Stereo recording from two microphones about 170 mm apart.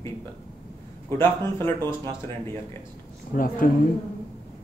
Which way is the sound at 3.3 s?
55° left (ahead or behind).